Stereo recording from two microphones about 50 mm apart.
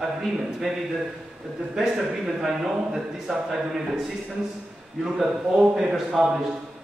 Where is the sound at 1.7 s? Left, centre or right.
Centre.